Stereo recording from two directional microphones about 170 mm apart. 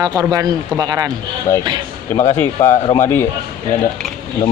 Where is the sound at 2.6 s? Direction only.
20° left (ahead or behind).